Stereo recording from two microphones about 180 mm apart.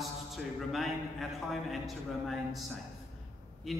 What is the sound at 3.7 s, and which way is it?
Speech, centre (ahead or behind).